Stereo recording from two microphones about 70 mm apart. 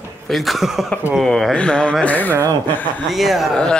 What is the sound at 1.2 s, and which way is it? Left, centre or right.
Speech, centre.